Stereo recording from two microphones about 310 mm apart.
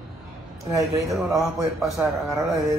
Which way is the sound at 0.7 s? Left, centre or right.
Centre.